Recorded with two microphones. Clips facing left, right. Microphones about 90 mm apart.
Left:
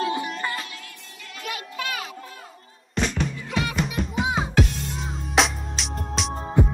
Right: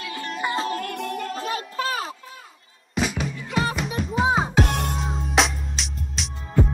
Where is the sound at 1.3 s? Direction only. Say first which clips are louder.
Right 6 dB; 35° right (ahead or behind).